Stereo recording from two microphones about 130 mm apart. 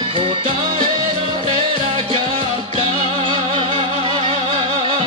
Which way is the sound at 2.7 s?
40° right (ahead or behind).